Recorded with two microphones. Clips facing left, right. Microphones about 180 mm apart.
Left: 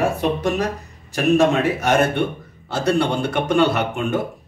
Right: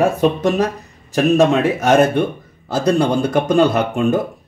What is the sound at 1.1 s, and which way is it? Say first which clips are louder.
A man's voice: right 3 dB; 45° right (ahead or behind).